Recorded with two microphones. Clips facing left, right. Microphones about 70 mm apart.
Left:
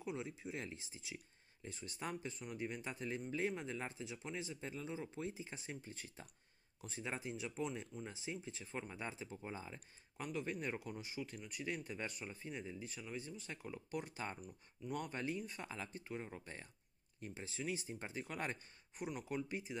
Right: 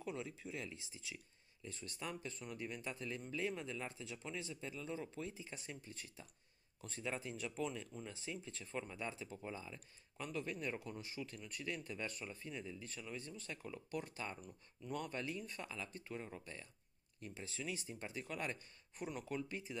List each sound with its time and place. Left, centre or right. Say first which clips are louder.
0.0 s speech: left 1 dB; centre
1.7 s speech: left 2 dB; centre
2.5 s speech: left 2 dB; left
4.8 s speech: even; centre
18.9 s speech: left 1 dB; centre